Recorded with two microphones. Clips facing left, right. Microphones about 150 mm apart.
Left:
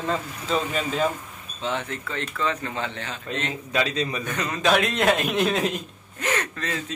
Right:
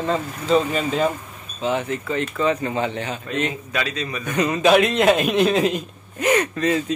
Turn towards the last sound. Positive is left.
turn(degrees=-15)  # may be behind; listen again after turning